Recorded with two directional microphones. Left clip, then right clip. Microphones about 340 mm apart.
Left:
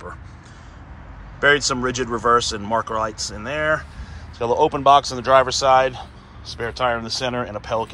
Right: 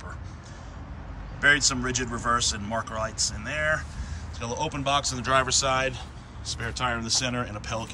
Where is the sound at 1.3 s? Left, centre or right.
Centre.